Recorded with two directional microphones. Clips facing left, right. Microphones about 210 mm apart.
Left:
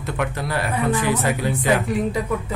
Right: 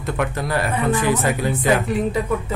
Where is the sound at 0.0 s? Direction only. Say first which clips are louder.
Right 2 dB; 45° right (ahead or behind).